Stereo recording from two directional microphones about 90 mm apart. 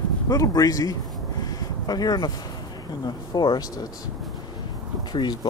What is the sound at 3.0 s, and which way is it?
Speech, 50° left (ahead or behind).